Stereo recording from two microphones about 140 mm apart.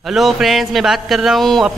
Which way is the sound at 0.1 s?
Centre (ahead or behind).